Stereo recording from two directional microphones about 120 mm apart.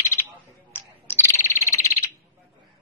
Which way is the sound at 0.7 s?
20° left (ahead or behind).